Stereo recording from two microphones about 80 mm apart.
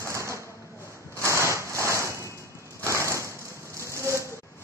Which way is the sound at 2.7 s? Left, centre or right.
Right.